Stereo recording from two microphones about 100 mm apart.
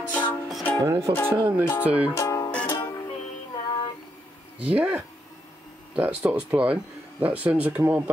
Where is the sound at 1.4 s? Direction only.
20° right (ahead or behind).